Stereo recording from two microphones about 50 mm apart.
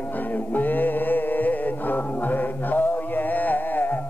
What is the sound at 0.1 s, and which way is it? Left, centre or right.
Music, left.